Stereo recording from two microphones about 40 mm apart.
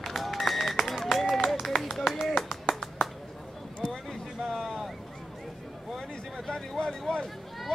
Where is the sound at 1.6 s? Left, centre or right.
Centre.